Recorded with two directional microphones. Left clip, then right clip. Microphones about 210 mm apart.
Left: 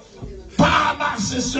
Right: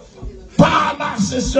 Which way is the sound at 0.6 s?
45° right (ahead or behind).